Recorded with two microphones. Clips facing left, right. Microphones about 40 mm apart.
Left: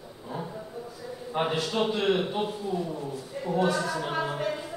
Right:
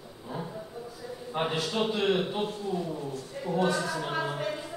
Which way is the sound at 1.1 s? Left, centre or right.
Centre.